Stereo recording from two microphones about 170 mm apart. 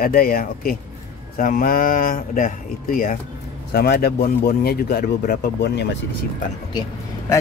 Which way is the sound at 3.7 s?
65° left (ahead or behind).